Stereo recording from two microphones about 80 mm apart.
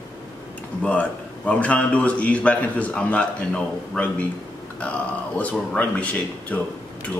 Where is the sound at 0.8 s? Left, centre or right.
Centre.